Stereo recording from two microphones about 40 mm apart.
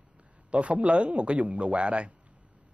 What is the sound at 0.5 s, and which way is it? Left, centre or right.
A man's voice, right.